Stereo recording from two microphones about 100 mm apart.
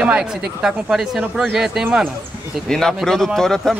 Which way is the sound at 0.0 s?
10° right (ahead or behind).